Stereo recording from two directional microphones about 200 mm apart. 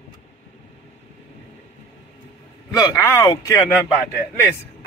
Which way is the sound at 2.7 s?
15° left (ahead or behind).